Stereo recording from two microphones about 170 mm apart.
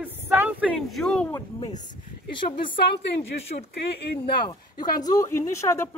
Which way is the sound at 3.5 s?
55° left (ahead or behind).